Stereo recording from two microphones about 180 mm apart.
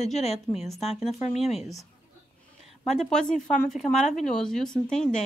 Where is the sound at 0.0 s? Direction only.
40° left (ahead or behind).